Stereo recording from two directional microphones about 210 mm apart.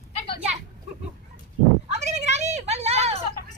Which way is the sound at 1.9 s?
35° right (ahead or behind).